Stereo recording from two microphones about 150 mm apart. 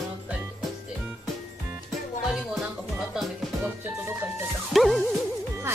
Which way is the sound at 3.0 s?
Centre (ahead or behind).